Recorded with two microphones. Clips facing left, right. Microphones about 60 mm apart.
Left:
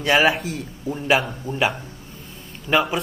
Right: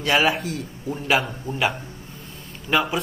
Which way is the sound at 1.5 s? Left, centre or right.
Right.